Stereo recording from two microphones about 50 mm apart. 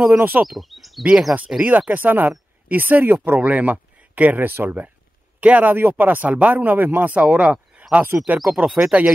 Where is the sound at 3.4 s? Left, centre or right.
Right.